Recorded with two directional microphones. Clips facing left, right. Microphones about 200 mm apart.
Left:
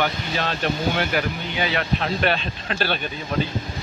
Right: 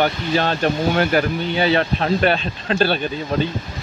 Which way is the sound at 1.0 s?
45° right (ahead or behind).